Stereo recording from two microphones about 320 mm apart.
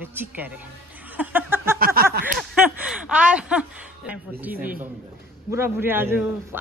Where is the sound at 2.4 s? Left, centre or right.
Centre.